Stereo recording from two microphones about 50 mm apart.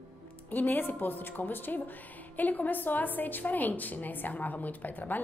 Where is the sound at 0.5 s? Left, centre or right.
Left.